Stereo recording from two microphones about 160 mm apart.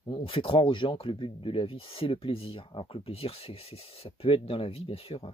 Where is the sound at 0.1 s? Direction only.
35° left (ahead or behind).